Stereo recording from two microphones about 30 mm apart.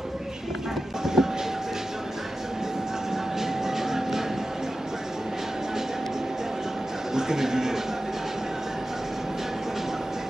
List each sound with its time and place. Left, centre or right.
1.0 s music: centre
3.3 s a sound: centre
7.2 s speech: centre